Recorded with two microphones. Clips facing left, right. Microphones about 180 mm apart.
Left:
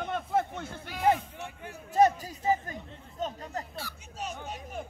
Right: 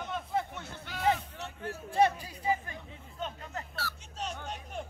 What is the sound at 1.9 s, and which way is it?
Chatter, 45° left (ahead or behind).